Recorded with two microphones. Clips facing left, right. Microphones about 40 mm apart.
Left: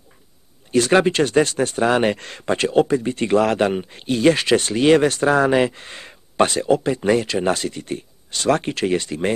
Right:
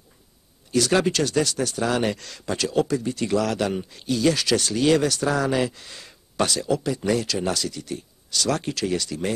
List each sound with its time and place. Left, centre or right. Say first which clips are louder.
0.7 s speech: left 5 dB; left